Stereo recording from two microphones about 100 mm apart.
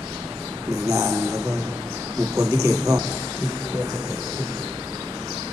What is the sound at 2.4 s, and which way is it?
Speech, 35° right (ahead or behind).